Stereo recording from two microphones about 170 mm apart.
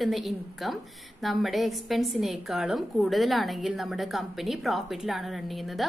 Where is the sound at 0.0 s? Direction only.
Centre (ahead or behind).